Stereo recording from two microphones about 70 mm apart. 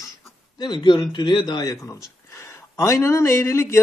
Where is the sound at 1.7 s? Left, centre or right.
Left.